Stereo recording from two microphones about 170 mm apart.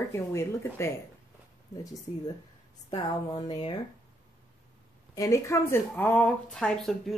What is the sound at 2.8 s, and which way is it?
Speech, 25° left (ahead or behind).